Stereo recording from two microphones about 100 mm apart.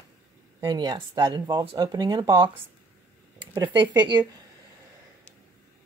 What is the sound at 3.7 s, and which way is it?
Speech, 50° right (ahead or behind).